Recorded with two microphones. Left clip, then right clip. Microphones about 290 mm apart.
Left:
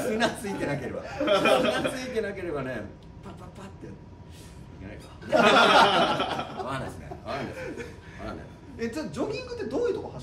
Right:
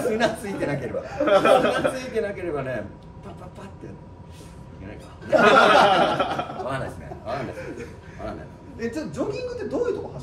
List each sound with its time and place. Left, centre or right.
0.0 s speech: centre
4.8 s speech: centre
7.8 s chuckle: centre
8.7 s speech: centre